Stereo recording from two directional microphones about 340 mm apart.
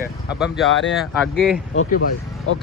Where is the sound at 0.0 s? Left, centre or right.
Centre.